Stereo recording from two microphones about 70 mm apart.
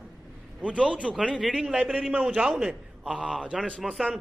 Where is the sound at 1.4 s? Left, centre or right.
Centre.